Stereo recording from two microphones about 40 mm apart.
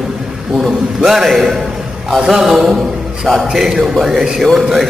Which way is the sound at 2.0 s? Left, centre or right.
Centre.